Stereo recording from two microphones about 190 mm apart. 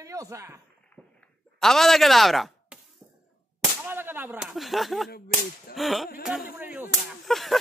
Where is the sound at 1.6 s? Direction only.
Centre (ahead or behind).